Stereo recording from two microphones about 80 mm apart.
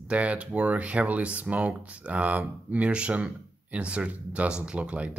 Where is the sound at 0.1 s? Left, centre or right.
Centre.